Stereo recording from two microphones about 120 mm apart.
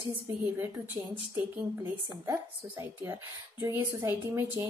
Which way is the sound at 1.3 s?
20° right (ahead or behind).